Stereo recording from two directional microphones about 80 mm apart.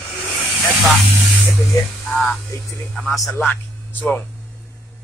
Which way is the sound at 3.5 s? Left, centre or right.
Left.